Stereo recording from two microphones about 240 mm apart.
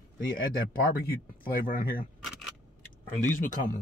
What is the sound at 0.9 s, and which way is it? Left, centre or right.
Speech, left.